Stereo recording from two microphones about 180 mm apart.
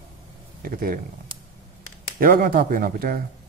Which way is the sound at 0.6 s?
55° right (ahead or behind).